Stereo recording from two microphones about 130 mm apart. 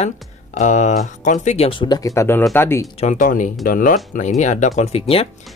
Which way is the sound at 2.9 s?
75° left (ahead or behind).